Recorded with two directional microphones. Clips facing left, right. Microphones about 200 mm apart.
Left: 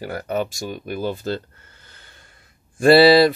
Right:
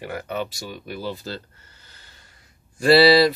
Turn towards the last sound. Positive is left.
turn(degrees=50)  # may be behind; listen again after turning